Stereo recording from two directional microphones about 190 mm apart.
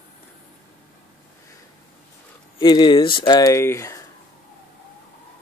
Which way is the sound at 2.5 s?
25° left (ahead or behind).